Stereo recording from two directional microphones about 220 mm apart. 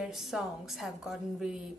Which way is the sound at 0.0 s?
Centre (ahead or behind).